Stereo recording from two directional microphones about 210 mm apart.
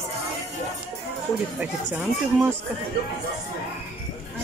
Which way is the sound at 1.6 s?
10° right (ahead or behind).